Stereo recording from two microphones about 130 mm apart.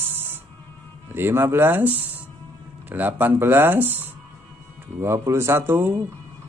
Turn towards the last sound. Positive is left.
turn(degrees=-15)  # may be behind; listen again after turning